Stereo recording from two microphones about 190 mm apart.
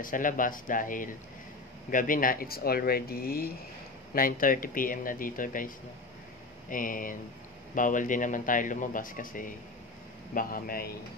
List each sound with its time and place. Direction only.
0.0 s speech: 45° left (ahead or behind)
6.7 s speech: 45° left (ahead or behind)